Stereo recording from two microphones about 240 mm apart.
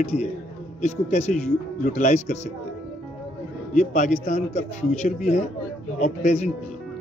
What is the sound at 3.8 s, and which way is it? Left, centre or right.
A man's voice, left.